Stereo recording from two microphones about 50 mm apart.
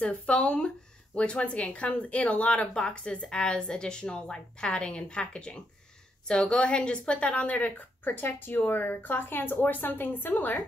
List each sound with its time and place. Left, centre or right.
0.0 s a woman's voice: left